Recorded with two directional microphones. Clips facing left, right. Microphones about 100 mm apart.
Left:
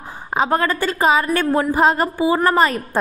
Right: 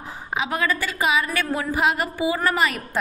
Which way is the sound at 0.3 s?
40° left (ahead or behind).